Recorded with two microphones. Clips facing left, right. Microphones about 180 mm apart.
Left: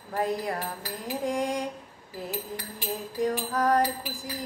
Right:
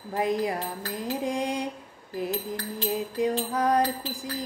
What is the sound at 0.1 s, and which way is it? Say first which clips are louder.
Music: right 2 dB; 15° right (ahead or behind).